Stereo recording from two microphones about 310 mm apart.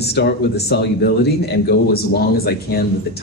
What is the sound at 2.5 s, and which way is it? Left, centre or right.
Speech, left.